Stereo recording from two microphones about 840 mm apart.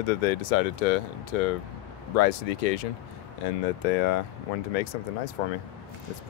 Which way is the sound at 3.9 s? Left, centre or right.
Left.